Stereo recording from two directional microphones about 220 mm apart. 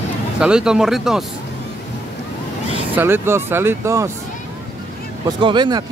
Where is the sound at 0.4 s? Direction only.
5° right (ahead or behind).